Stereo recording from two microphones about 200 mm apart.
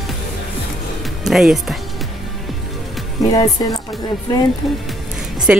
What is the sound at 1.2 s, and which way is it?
Speech, centre (ahead or behind).